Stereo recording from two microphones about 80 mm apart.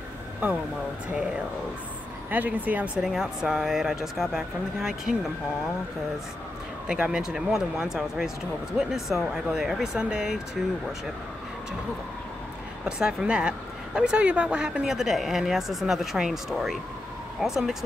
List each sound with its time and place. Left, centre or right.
2.3 s speech: right
3.0 s speech: centre
6.9 s speech: centre
12.8 s speech: centre